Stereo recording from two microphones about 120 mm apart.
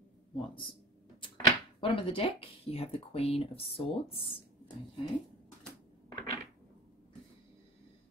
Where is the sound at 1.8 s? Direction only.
45° left (ahead or behind).